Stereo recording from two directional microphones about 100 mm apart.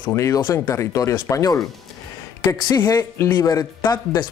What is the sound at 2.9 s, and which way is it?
Speech, 25° left (ahead or behind).